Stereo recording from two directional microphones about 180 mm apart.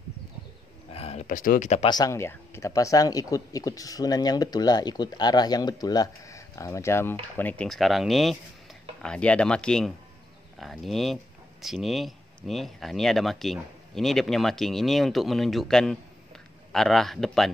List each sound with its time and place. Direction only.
0.9 s a sound: 35° left (ahead or behind)
1.2 s speech: 50° left (ahead or behind)
1.9 s speech: 20° left (ahead or behind); by 17.5 s centre (ahead or behind)